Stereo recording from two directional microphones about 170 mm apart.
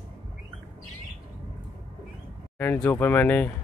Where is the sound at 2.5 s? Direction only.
10° left (ahead or behind).